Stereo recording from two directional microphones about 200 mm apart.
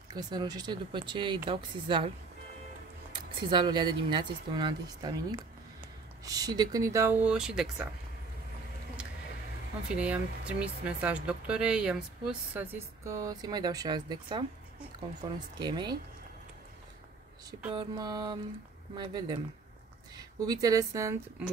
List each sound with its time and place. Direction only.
0.1 s speech: 20° right (ahead or behind)
3.3 s speech: 25° right (ahead or behind); by 7.9 s 5° right (ahead or behind)
9.9 s speech: 5° right (ahead or behind); by 16.0 s 20° right (ahead or behind)
17.7 s speech: 20° right (ahead or behind)